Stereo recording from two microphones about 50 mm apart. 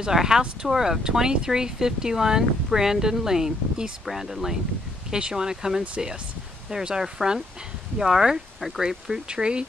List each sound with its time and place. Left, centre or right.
0.0 s speech: centre
9.3 s speech: centre